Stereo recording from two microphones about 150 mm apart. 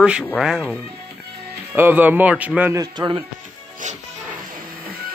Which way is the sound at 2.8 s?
30° right (ahead or behind).